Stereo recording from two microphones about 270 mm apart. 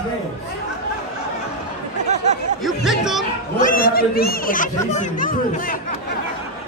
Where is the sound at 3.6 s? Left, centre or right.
Left.